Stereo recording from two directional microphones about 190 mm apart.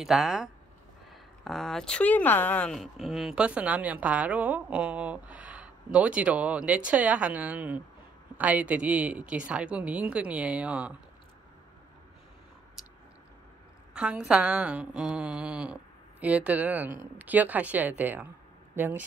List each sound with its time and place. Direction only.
0.0 s speech: centre (ahead or behind)
12.8 s a sound: centre (ahead or behind)
13.9 s speech: 5° right (ahead or behind)